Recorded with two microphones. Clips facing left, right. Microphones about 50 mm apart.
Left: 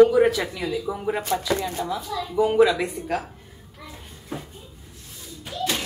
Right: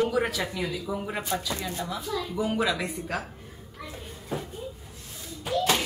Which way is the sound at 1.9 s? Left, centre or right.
Centre.